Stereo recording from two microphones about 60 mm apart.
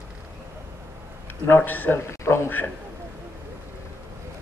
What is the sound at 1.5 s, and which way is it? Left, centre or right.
Speech, left.